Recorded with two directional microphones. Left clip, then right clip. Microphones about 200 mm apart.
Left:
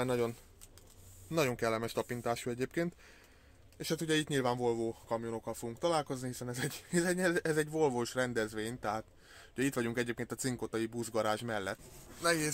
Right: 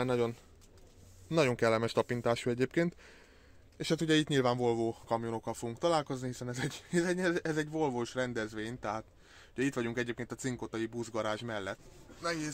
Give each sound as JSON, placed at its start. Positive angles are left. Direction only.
{"t": 0.0, "sound": "speech", "side_deg": -20}
{"t": 1.3, "sound": "speech", "side_deg": -30}
{"t": 12.2, "sound": "speech", "side_deg": 15}